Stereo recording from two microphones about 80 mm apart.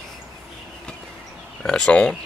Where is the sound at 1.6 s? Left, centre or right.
Centre.